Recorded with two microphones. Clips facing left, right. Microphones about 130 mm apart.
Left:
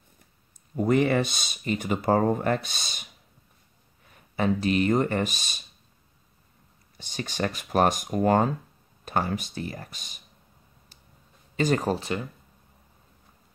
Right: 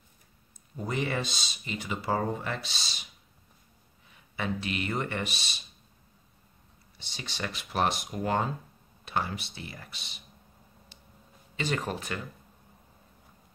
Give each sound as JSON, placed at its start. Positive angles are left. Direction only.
{"t": 0.7, "sound": "speech", "side_deg": 55}
{"t": 4.1, "sound": "speech", "side_deg": 40}
{"t": 7.0, "sound": "speech", "side_deg": 45}
{"t": 11.5, "sound": "speech", "side_deg": 40}